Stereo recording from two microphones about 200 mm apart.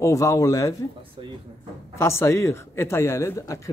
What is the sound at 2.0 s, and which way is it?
Speech, 15° left (ahead or behind).